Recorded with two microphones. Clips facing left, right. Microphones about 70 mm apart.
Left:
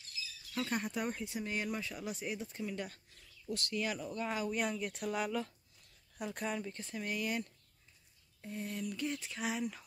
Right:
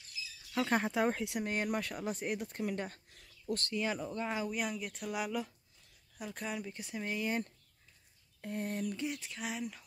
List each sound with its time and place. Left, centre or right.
0.6 s speech: right
1.4 s speech: right
3.4 s speech: right
3.7 s speech: right
4.5 s speech: centre
6.7 s speech: centre; by 7.5 s right
8.4 s speech: right
9.2 s speech: centre